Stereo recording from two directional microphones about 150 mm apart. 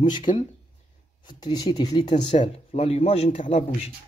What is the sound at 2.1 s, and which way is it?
Speech, 40° left (ahead or behind).